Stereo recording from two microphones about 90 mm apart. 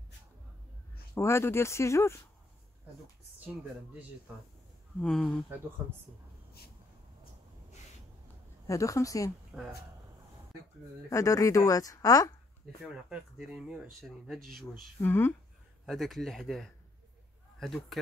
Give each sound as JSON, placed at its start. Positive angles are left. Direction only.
{"t": 1.1, "sound": "speech", "side_deg": 30}
{"t": 5.0, "sound": "speech", "side_deg": 10}
{"t": 8.6, "sound": "speech", "side_deg": 35}
{"t": 9.5, "sound": "speech", "side_deg": 0}
{"t": 11.1, "sound": "speech", "side_deg": 35}
{"t": 12.8, "sound": "speech", "side_deg": -10}
{"t": 15.0, "sound": "speech", "side_deg": 25}
{"t": 15.8, "sound": "speech", "side_deg": 0}